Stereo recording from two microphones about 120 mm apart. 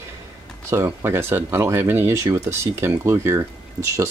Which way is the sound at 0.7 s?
25° right (ahead or behind).